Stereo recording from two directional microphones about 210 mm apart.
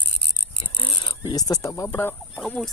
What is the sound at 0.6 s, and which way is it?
Fowl, 25° left (ahead or behind).